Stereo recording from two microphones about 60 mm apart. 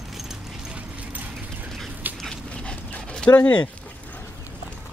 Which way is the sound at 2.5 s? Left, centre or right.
Centre.